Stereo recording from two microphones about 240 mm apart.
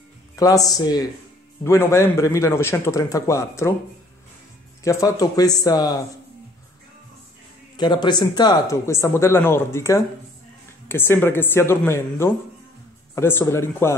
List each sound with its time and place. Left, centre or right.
0.4 s speech: centre
4.8 s speech: centre
7.7 s speech: centre